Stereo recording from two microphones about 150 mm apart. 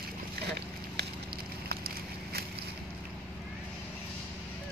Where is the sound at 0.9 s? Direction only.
90° right.